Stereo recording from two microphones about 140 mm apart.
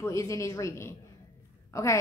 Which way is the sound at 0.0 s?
20° left (ahead or behind).